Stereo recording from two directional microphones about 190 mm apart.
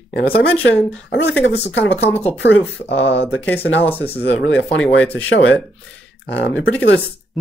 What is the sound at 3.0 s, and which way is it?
Speech, 70° left (ahead or behind).